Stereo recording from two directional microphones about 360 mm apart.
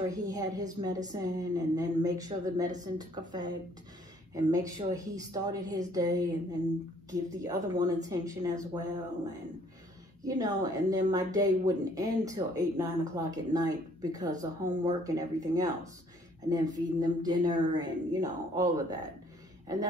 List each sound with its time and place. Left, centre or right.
0.1 s speech: centre
10.2 s speech: centre